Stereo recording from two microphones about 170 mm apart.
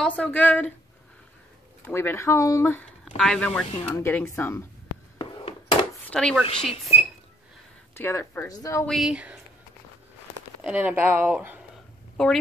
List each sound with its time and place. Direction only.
0.0 s speech: 5° left (ahead or behind)
1.9 s speech: 15° left (ahead or behind)
5.2 s a sound: 30° left (ahead or behind)
6.0 s a sound: 5° left (ahead or behind)
6.7 s speech: 35° left (ahead or behind)
7.9 s speech: 15° left (ahead or behind)
8.8 s speech: centre (ahead or behind)
10.6 s speech: 10° right (ahead or behind)
12.2 s speech: 5° left (ahead or behind)